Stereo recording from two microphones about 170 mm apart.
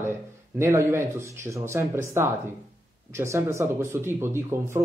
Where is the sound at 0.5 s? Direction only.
15° right (ahead or behind).